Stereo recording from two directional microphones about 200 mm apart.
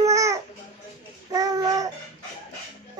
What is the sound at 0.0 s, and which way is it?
Babbling, 15° right (ahead or behind).